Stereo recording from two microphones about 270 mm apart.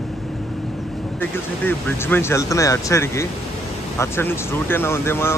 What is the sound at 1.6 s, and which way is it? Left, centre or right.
Speech, centre.